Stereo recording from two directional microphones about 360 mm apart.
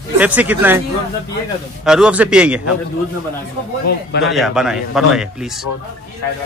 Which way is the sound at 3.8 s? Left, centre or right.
Left.